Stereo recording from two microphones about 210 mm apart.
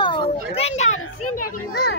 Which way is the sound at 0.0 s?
20° left (ahead or behind).